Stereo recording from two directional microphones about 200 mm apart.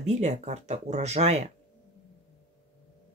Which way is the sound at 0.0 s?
35° right (ahead or behind).